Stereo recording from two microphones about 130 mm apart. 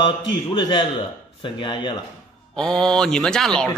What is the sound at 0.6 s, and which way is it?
Speech, 40° left (ahead or behind).